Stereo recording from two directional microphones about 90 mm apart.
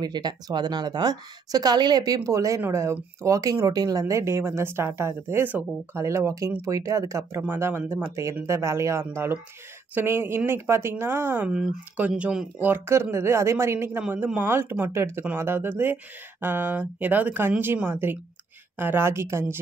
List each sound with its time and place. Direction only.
0.0 s a woman's voice: 50° right (ahead or behind)
4.1 s speech: 35° right (ahead or behind)
7.4 s speech: 25° right (ahead or behind)
11.4 s speech: 10° right (ahead or behind)
12.6 s speech: 30° right (ahead or behind)
14.0 s speech: 15° right (ahead or behind)